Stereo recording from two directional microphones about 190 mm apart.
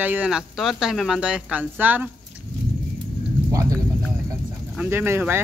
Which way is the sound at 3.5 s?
15° right (ahead or behind).